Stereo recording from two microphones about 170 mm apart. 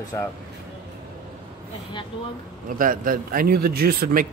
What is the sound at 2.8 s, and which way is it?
A man's voice, 55° right (ahead or behind).